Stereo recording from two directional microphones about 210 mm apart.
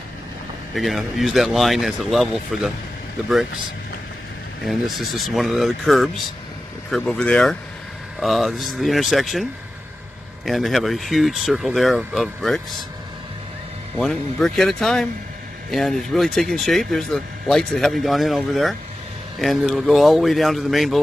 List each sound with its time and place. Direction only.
0.7 s speech: centre (ahead or behind)
4.6 s speech: centre (ahead or behind)
13.9 s speech: centre (ahead or behind)